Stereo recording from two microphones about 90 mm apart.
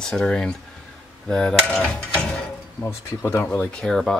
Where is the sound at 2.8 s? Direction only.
25° left (ahead or behind).